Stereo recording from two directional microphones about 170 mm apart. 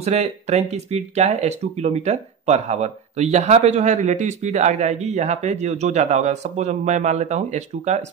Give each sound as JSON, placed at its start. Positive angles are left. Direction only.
{"t": 0.0, "sound": "speech", "side_deg": -40}